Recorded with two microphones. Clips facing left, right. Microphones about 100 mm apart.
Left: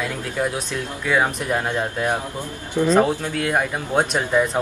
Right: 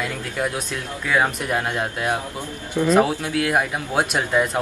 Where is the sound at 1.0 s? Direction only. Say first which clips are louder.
Even; centre (ahead or behind).